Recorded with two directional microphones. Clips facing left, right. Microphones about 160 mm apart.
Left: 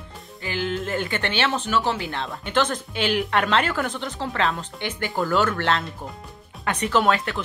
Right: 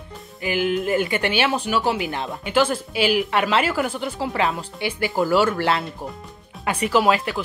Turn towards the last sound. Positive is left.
turn(degrees=-5)  # may be behind; listen again after turning